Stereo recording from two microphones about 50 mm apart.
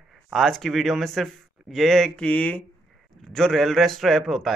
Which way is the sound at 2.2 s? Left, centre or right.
Left.